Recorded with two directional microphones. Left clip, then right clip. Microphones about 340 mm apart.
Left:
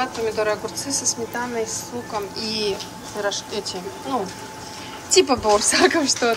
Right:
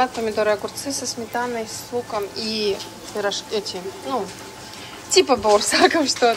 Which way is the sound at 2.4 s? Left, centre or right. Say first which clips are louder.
Left 1 dB; centre.